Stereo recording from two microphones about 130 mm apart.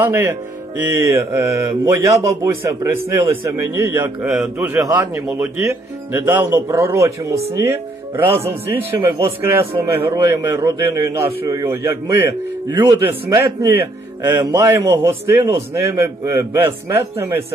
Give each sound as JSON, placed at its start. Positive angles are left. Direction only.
{"t": 0.0, "sound": "a man's voice", "side_deg": -20}